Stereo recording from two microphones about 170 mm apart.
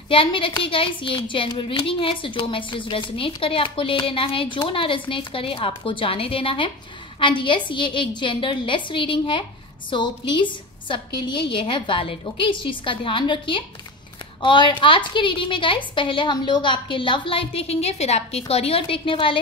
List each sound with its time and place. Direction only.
0.1 s a woman's voice: 30° left (ahead or behind)